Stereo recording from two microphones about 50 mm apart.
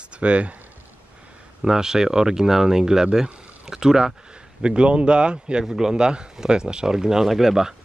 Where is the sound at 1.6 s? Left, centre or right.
Centre.